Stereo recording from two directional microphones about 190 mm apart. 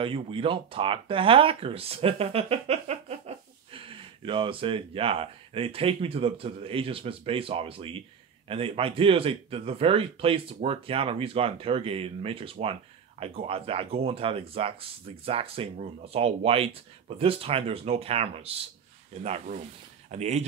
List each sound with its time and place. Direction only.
0.0 s speech: 30° right (ahead or behind)